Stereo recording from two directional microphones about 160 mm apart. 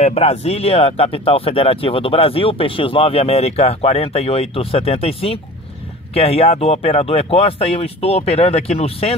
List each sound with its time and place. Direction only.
0.0 s speech: 40° left (ahead or behind)